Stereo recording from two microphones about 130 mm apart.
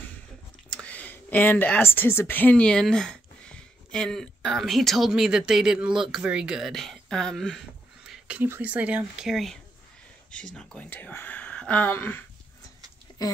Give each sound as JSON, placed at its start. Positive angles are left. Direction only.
{"t": 0.7, "sound": "a woman's voice", "side_deg": 10}
{"t": 8.1, "sound": "speech", "side_deg": -10}
{"t": 13.1, "sound": "a sound", "side_deg": 30}